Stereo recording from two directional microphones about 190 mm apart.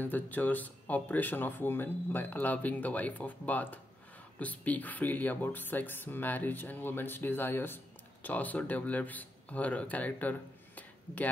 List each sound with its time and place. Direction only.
0.0 s speech: 10° left (ahead or behind)